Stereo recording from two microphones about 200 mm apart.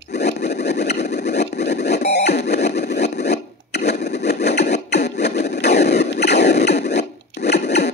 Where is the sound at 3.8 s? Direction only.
55° left (ahead or behind).